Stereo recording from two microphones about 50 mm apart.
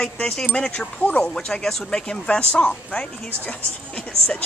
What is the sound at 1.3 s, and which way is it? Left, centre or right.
Speech, centre.